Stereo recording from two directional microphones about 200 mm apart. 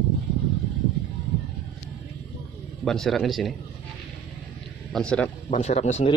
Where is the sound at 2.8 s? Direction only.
Centre (ahead or behind).